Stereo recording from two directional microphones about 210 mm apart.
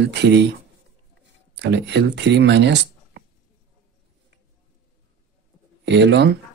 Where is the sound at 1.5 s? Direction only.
55° right (ahead or behind).